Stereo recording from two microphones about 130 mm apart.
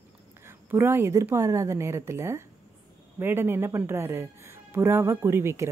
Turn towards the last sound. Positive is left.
turn(degrees=-20)  # may be behind; listen again after turning